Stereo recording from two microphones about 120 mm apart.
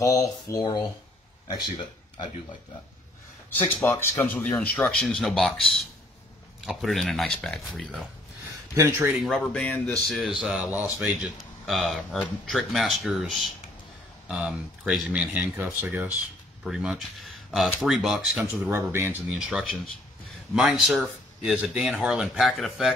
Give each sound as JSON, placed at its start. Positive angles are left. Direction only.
{"t": 0.0, "sound": "speech", "side_deg": 30}
{"t": 3.4, "sound": "speech", "side_deg": 15}
{"t": 8.7, "sound": "speech", "side_deg": -15}
{"t": 9.4, "sound": "speech", "side_deg": 10}
{"t": 10.1, "sound": "speech", "side_deg": 0}
{"t": 18.4, "sound": "speech", "side_deg": -20}
{"t": 19.3, "sound": "speech", "side_deg": -5}